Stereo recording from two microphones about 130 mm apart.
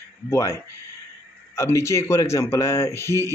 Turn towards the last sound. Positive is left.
turn(degrees=20)  # may be behind; listen again after turning